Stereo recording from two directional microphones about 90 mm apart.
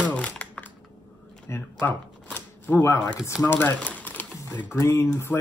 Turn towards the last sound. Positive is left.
turn(degrees=30)  # may be behind; listen again after turning